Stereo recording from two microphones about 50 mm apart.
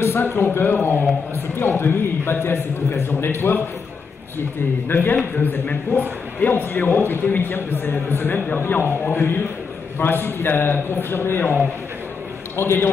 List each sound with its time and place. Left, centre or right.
0.1 s a man's voice: left
4.8 s a man's voice: left
12.5 s a man's voice: left